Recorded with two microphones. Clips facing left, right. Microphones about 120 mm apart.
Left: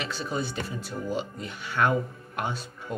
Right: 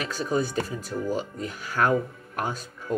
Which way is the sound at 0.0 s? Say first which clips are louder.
Right 5 dB; 40° right (ahead or behind).